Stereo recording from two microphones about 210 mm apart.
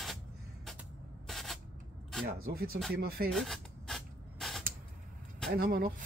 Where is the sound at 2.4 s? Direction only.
45° right (ahead or behind).